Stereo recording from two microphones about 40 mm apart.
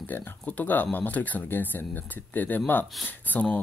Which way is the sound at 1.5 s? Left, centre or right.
Left.